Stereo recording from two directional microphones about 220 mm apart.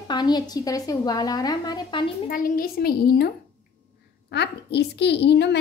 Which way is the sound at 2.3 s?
40° left (ahead or behind).